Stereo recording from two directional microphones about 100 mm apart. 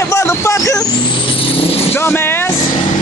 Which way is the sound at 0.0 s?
25° left (ahead or behind).